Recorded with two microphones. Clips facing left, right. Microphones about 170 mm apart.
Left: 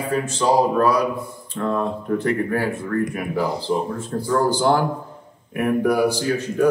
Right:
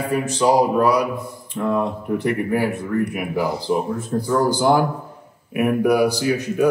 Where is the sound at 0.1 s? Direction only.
10° right (ahead or behind).